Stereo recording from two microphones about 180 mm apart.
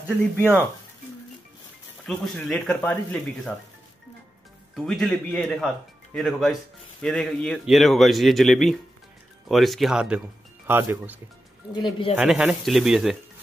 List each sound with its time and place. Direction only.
0.1 s speech: 10° right (ahead or behind)
2.0 s a man's voice: 5° left (ahead or behind)
4.7 s a man's voice: centre (ahead or behind)
11.7 s speech: 25° left (ahead or behind)
12.2 s a man's voice: 5° right (ahead or behind)